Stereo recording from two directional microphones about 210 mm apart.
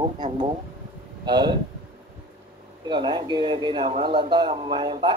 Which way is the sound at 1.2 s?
20° right (ahead or behind).